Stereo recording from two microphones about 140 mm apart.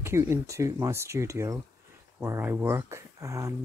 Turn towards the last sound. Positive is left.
turn(degrees=-25)  # may be behind; listen again after turning